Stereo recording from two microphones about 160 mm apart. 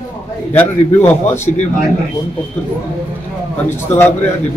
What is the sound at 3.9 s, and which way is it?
Speech, 10° left (ahead or behind).